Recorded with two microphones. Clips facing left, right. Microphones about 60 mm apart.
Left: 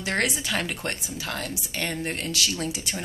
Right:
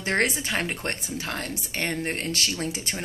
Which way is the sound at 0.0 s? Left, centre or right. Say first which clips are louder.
Right 2 dB; right.